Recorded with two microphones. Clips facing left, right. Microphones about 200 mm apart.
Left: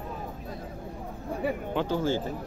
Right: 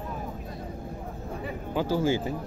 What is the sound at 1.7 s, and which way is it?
Speech, 5° right (ahead or behind).